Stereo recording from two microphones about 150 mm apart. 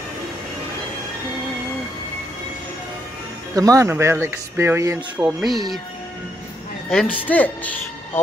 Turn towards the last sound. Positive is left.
turn(degrees=10)  # may be behind; listen again after turning